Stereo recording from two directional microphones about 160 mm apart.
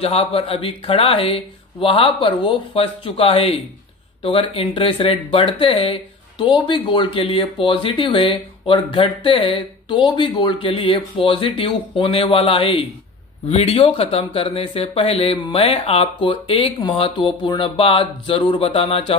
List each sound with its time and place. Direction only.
0.0 s speech: 40° left (ahead or behind)